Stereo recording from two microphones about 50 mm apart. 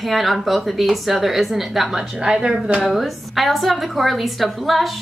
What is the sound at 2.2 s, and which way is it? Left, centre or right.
Speech, centre.